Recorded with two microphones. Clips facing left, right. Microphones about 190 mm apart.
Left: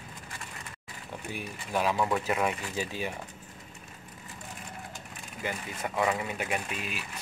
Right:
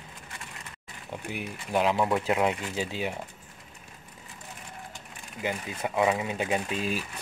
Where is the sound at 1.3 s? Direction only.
15° right (ahead or behind).